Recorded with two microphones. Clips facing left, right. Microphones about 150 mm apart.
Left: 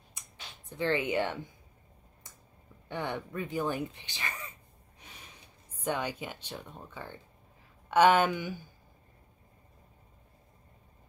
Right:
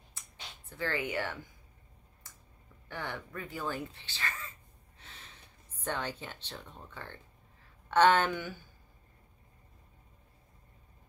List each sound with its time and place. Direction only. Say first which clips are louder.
0.2 s a sound: left 1 dB; 15° left (ahead or behind)
0.7 s speech: left 5 dB; 20° left (ahead or behind)
2.9 s speech: left 5 dB; 20° left (ahead or behind)